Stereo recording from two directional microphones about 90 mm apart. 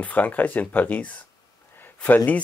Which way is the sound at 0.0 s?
20° left (ahead or behind).